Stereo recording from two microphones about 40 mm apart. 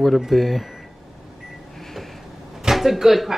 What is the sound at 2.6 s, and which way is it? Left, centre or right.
Speech, centre.